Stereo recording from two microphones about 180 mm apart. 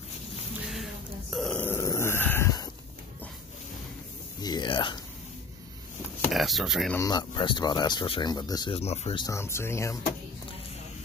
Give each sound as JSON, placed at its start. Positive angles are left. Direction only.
{"t": 1.3, "sound": "dog", "side_deg": 0}
{"t": 4.4, "sound": "a sound", "side_deg": 25}
{"t": 6.3, "sound": "speech", "side_deg": 0}
{"t": 7.0, "sound": "speech", "side_deg": 20}
{"t": 8.7, "sound": "speech", "side_deg": 35}
{"t": 9.2, "sound": "speech", "side_deg": 15}